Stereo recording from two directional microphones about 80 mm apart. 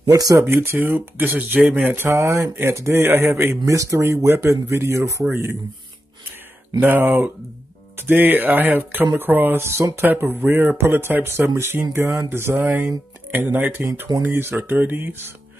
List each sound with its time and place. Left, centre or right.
0.1 s speech: right
0.5 s speech: right
2.0 s speech: right
3.6 s speech: right
6.8 s speech: right